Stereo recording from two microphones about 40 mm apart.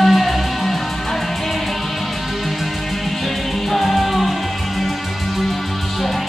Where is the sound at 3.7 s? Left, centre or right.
Centre.